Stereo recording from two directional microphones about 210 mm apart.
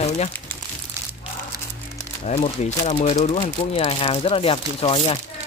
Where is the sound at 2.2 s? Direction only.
30° left (ahead or behind).